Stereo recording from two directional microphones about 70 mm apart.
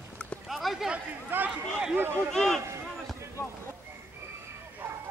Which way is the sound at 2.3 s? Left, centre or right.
Centre.